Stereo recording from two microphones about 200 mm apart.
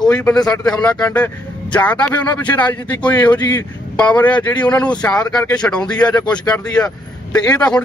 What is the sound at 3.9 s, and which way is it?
A man's voice, 5° left (ahead or behind).